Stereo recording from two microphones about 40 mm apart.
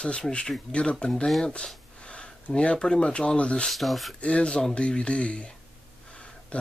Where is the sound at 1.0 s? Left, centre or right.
Centre.